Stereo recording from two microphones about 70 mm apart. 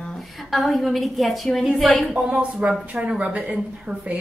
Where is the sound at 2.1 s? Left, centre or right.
Centre.